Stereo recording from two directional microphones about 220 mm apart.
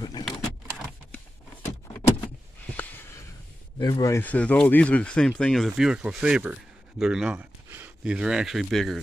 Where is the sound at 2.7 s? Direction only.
10° left (ahead or behind).